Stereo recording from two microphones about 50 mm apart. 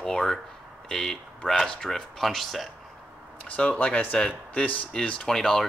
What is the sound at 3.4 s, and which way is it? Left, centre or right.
Speech, left.